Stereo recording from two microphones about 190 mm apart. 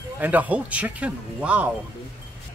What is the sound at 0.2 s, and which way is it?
Speech, 10° right (ahead or behind).